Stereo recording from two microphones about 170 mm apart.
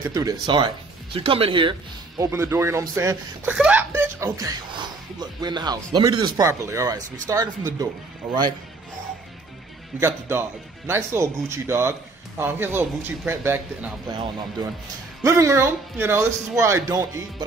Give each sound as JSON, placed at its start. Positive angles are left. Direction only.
{"t": 0.1, "sound": "speech", "side_deg": -20}
{"t": 2.2, "sound": "speech", "side_deg": -15}
{"t": 3.4, "sound": "speech", "side_deg": -10}
{"t": 9.9, "sound": "speech", "side_deg": -15}
{"t": 14.1, "sound": "speech", "side_deg": -30}
{"t": 15.2, "sound": "speech", "side_deg": -20}